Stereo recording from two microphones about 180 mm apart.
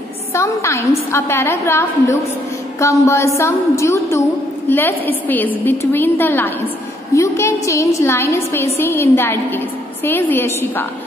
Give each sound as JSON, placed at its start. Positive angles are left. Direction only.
{"t": 0.3, "sound": "a woman's voice", "side_deg": 15}